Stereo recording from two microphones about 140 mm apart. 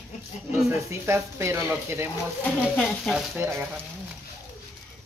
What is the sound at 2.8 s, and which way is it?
Speech, centre (ahead or behind).